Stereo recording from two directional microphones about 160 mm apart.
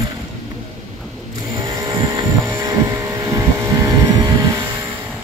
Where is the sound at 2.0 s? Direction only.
20° right (ahead or behind).